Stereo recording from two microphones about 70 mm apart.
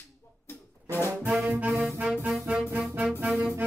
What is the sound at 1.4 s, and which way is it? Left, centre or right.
Saxophone, right.